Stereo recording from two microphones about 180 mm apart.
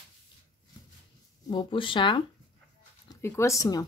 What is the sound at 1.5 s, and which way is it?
Speech, 25° left (ahead or behind).